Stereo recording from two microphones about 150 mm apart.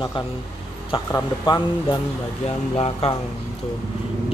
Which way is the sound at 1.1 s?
25° left (ahead or behind).